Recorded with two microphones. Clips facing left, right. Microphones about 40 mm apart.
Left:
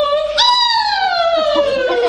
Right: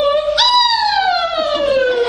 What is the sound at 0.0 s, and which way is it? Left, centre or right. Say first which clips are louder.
Police car: even; centre.